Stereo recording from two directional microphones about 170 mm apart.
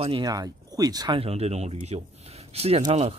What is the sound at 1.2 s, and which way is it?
Speech, 35° right (ahead or behind).